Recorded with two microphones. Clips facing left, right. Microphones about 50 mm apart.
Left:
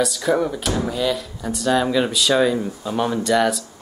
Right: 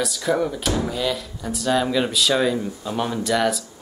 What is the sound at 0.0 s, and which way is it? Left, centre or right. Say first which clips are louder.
Speech: left 2 dB; centre.